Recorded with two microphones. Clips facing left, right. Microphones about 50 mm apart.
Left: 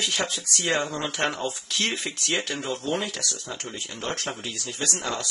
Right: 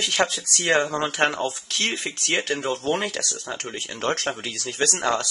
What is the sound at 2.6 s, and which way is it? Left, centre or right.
Speech, right.